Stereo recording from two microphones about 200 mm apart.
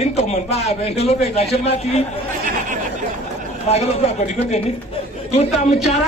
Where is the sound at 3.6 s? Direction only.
30° left (ahead or behind).